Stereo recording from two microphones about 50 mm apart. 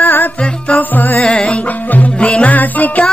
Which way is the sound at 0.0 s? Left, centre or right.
Left.